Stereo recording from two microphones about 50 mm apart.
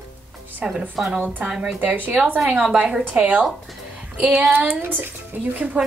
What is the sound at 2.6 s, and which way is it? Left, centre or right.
Speech, right.